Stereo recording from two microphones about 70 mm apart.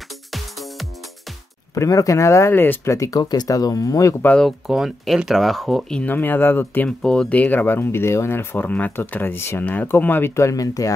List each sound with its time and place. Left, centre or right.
0.3 s music: centre
1.8 s speech: left
2.5 s speech: left
2.9 s speech: left
3.2 s speech: left
4.6 s speech: centre
6.0 s speech: left
6.9 s speech: centre
7.6 s speech: left
10.5 s speech: left